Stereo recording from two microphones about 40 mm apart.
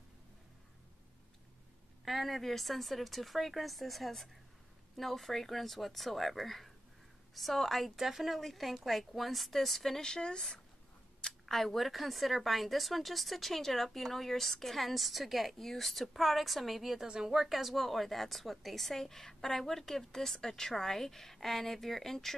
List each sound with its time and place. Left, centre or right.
2.0 s a woman's voice: centre
11.4 s a woman's voice: centre
17.1 s a woman's voice: centre
17.4 s a woman's voice: centre